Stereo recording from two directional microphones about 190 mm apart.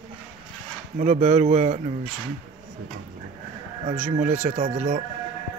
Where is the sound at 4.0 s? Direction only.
40° right (ahead or behind).